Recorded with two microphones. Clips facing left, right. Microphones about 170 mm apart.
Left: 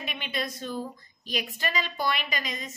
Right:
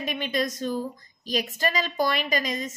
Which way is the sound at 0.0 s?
40° right (ahead or behind).